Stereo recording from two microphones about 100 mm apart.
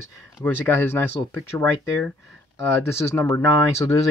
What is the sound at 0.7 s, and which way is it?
Speech, 20° left (ahead or behind).